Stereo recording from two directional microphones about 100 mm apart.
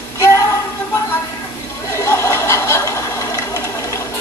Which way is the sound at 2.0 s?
30° left (ahead or behind).